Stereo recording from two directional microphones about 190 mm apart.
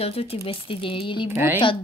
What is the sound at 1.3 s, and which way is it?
Speech, 10° right (ahead or behind).